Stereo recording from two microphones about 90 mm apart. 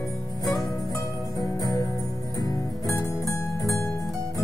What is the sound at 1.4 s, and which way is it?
Music, 45° left (ahead or behind).